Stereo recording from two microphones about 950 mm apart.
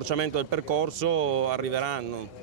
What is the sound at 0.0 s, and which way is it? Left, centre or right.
Speech, right.